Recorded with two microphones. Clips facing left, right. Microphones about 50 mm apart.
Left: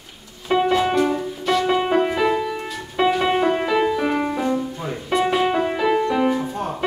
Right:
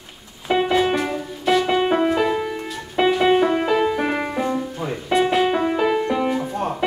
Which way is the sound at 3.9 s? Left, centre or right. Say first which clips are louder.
Left 1 dB; centre.